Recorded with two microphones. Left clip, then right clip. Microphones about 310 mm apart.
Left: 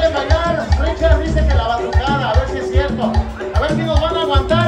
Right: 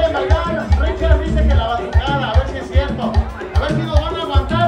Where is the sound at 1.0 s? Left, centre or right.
Left.